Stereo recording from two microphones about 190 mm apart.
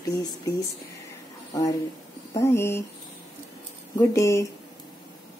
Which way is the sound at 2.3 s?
15° left (ahead or behind).